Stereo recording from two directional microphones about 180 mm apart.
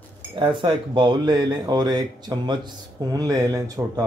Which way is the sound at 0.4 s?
30° right (ahead or behind).